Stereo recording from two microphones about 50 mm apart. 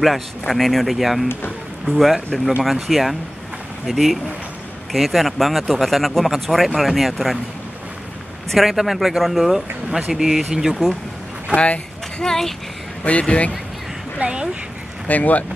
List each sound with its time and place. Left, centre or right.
0.5 s speech: centre
8.5 s speech: centre
11.5 s speech: left
12.2 s speech: centre
13.2 s speech: left
14.1 s speech: centre
15.0 s speech: left